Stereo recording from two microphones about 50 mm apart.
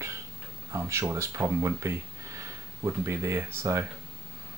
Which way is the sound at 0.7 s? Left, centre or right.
Right.